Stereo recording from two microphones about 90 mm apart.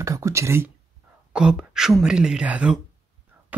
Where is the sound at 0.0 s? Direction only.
35° right (ahead or behind).